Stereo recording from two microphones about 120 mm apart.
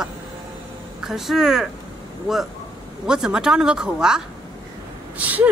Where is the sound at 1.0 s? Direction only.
Centre (ahead or behind).